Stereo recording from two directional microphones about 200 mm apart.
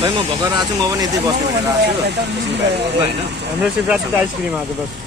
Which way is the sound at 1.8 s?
55° right (ahead or behind).